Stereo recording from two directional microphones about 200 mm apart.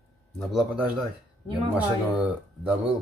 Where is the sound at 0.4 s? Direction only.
Centre (ahead or behind).